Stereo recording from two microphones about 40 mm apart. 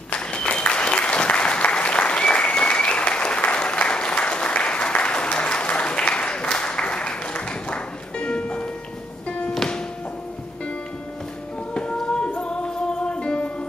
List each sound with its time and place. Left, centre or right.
0.1 s applause: left
9.6 s music: centre
11.7 s music: left